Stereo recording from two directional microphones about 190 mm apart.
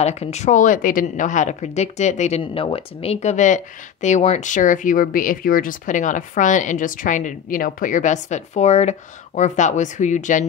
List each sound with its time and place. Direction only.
0.0 s a woman's voice: 35° left (ahead or behind)